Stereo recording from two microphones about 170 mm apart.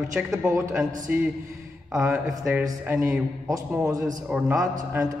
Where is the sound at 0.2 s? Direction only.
10° right (ahead or behind).